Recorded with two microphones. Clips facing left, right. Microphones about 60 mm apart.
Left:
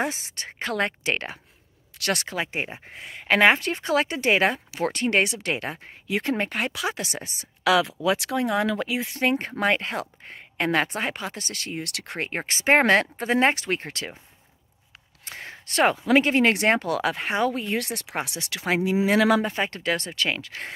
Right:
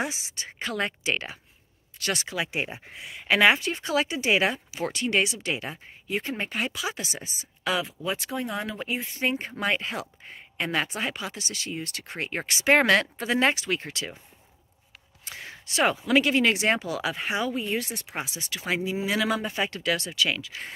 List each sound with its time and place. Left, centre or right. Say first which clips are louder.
0.0 s speech: left 3 dB; left
2.0 s speech: left 3 dB; left
2.3 s speech: left 1 dB; left
6.0 s speech: left 5 dB; left
12.2 s speech: left 1 dB; left
15.2 s speech: left 2 dB; left
19.0 s speech: left 7 dB; left
19.5 s speech: left 1 dB; left